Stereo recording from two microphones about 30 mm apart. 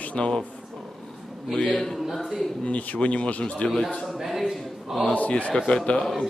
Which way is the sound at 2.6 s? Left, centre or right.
Left.